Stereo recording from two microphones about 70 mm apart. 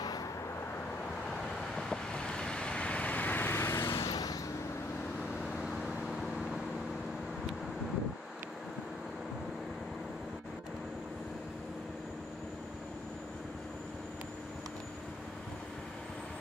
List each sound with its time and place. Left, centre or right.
1.8 s vehicle: centre; by 4.0 s left
4.1 s a sound: left
5.6 s vehicle: centre